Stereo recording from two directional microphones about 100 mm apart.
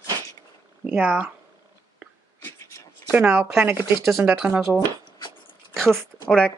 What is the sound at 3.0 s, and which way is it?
Speech, 15° right (ahead or behind).